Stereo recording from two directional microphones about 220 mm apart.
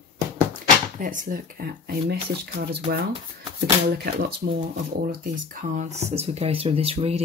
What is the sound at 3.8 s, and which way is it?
Speech, 45° right (ahead or behind).